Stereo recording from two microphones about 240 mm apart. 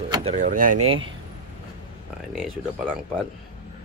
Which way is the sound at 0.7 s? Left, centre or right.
Right.